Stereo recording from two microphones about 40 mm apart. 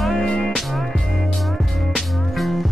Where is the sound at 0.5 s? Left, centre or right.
Centre.